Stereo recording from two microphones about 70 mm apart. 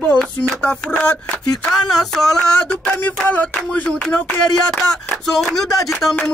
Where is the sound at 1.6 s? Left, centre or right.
Centre.